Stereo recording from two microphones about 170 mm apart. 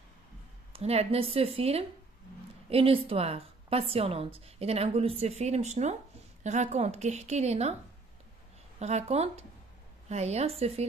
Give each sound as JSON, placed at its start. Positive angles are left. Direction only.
{"t": 0.7, "sound": "a woman's voice", "side_deg": -35}
{"t": 8.7, "sound": "a woman's voice", "side_deg": -40}